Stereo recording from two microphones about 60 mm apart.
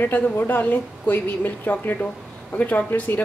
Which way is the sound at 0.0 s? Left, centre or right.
Left.